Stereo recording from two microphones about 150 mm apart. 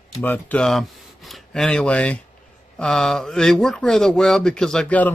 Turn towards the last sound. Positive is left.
turn(degrees=10)  # may be behind; listen again after turning